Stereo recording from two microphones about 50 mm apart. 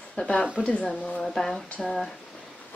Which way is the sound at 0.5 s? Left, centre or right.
Left.